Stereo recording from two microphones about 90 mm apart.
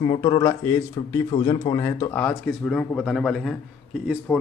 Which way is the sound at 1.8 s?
35° left (ahead or behind).